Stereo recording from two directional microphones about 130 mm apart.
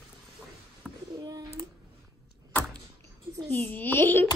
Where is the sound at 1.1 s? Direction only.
30° right (ahead or behind).